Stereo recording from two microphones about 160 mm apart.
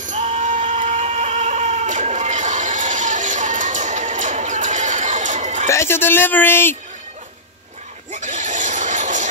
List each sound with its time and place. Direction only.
0.0 s a sound: 45° right (ahead or behind)
5.7 s speech: 15° left (ahead or behind)
8.1 s goat: 50° right (ahead or behind)